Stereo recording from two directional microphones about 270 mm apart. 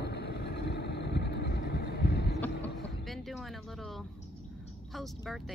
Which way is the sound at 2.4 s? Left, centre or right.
Centre.